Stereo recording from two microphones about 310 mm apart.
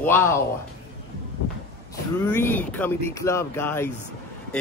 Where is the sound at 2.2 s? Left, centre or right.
Centre.